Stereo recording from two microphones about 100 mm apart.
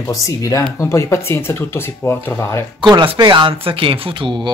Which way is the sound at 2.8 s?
55° right (ahead or behind).